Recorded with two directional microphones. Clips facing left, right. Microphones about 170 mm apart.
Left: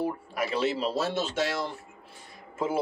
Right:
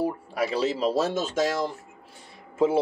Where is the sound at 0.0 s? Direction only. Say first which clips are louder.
Right 3 dB; 35° right (ahead or behind).